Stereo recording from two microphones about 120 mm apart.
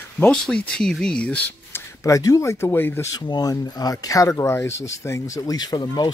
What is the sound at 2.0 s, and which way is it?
Speech, 25° left (ahead or behind).